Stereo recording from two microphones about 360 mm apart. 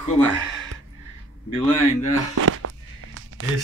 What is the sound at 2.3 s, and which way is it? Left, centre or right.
Walk, right.